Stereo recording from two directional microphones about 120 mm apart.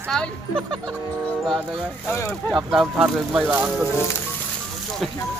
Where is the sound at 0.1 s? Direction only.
5° left (ahead or behind).